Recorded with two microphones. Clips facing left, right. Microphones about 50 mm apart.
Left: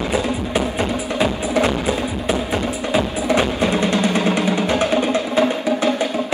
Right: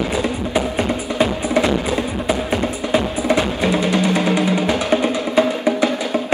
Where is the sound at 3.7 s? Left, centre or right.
Left.